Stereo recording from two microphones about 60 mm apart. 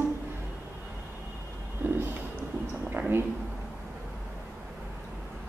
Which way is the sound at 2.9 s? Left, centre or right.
Right.